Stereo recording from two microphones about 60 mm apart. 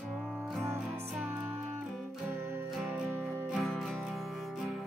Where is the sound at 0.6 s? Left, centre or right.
Right.